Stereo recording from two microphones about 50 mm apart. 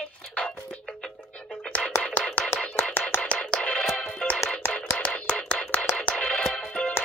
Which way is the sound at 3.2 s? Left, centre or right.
Centre.